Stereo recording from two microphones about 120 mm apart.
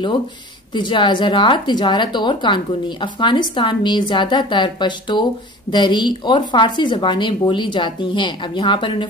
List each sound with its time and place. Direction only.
0.7 s speech: 40° left (ahead or behind)